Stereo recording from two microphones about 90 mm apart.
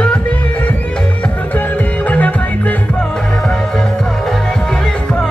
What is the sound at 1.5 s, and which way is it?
Music, 20° left (ahead or behind).